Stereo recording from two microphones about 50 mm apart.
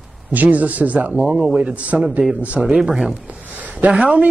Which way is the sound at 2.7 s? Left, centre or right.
Centre.